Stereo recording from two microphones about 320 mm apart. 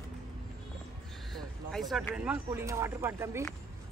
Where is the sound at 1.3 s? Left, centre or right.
Centre.